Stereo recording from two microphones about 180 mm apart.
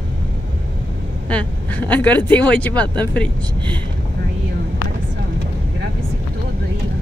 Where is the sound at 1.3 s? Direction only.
10° left (ahead or behind).